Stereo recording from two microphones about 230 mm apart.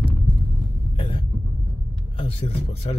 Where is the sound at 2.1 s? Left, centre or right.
Left.